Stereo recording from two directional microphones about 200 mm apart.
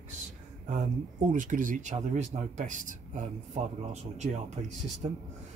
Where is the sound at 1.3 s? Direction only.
40° right (ahead or behind).